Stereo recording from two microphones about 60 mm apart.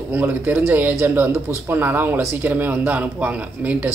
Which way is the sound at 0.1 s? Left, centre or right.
Right.